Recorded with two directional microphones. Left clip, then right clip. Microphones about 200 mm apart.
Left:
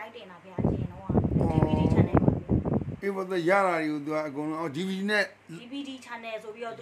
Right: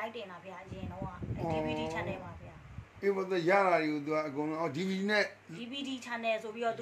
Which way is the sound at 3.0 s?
40° left (ahead or behind).